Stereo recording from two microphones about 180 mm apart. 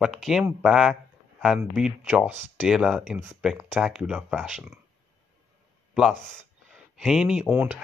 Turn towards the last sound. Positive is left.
turn(degrees=-5)  # may be behind; listen again after turning